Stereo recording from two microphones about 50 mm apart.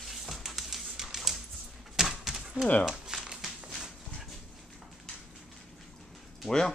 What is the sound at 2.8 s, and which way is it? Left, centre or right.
Crumpling, centre.